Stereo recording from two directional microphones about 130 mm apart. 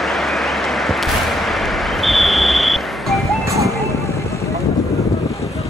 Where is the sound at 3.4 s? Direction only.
25° right (ahead or behind).